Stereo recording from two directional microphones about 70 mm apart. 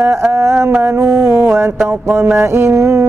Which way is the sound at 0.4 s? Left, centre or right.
Right.